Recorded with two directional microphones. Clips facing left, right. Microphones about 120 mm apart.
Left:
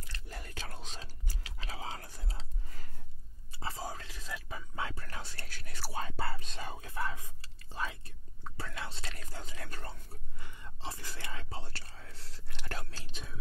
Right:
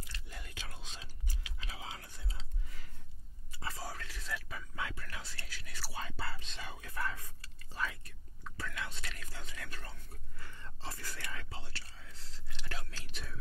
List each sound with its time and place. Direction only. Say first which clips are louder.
0.0 s whispering: left 2 dB; 40° left (ahead or behind)
3.5 s whispering: left 3 dB; 25° left (ahead or behind); by 6.7 s 45° left (ahead or behind)
6.7 s whispering: left 1 dB; 30° left (ahead or behind)
10.4 s whispering: left 2 dB; 15° left (ahead or behind); by 12.8 s 45° left (ahead or behind)
12.9 s whispering: left 1 dB; 25° left (ahead or behind)